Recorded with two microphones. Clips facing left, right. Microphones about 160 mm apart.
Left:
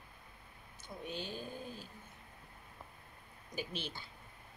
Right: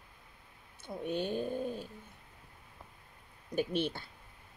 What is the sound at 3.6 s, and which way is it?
Speech, 60° right (ahead or behind).